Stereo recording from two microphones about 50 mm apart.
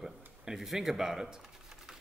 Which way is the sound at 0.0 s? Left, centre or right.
Centre.